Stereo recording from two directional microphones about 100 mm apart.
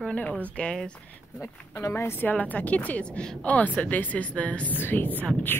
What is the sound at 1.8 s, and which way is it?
Speech, 30° left (ahead or behind).